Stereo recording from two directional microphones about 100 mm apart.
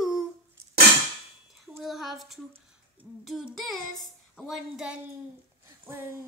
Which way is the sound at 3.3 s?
Centre (ahead or behind).